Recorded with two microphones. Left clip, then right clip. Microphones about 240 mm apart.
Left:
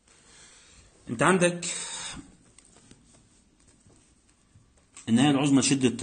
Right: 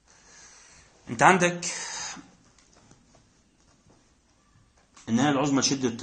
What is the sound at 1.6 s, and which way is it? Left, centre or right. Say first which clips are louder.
Speech: right 2 dB; left.